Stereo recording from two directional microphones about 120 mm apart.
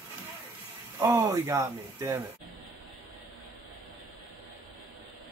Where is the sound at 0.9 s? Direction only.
20° right (ahead or behind).